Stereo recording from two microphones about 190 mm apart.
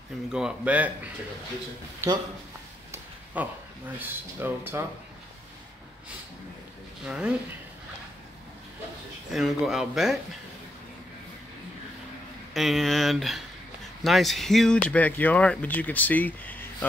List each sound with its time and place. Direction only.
0.3 s speech: 5° right (ahead or behind)
3.4 s speech: 10° right (ahead or behind)
7.1 s speech: 5° right (ahead or behind)
9.3 s speech: centre (ahead or behind)
12.5 s speech: centre (ahead or behind)